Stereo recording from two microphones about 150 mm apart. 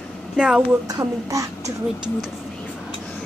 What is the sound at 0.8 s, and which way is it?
Speech, 25° right (ahead or behind).